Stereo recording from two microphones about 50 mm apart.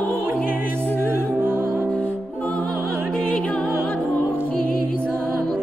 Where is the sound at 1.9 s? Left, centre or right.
Left.